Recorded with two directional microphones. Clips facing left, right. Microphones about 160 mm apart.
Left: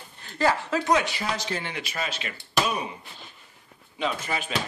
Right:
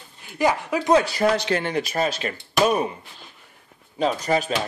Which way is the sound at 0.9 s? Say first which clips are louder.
Right 10 dB; 35° right (ahead or behind).